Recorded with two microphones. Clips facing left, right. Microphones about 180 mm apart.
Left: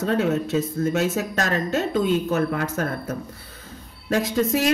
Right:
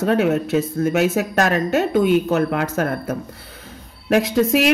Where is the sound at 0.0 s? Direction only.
65° right (ahead or behind).